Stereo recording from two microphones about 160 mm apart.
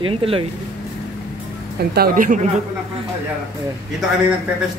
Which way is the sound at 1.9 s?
65° right (ahead or behind).